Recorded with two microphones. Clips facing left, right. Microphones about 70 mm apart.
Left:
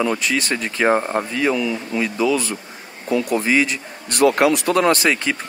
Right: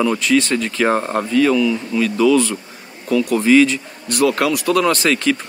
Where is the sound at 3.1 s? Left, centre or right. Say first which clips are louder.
Right 3 dB; left.